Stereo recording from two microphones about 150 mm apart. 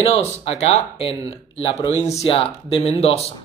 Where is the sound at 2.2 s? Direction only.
40° left (ahead or behind).